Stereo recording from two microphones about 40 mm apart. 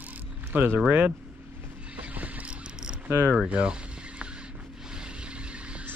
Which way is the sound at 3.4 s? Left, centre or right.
Right.